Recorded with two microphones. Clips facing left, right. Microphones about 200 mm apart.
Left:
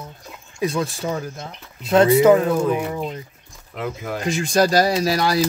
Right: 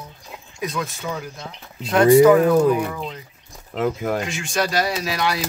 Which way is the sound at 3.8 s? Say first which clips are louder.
Right 6 dB; 50° right (ahead or behind).